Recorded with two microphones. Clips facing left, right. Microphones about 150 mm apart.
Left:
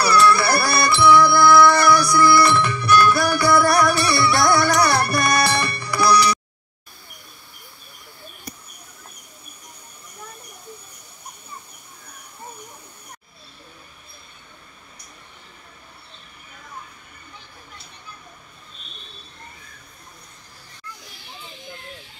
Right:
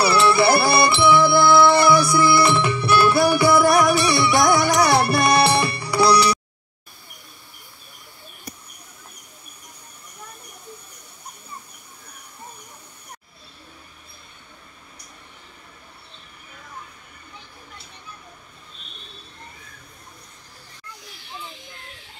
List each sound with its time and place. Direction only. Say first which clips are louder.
0.0 s music: even; 25° right (ahead or behind)